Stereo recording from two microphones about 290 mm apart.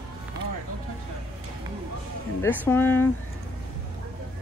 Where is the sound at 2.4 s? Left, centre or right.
Centre.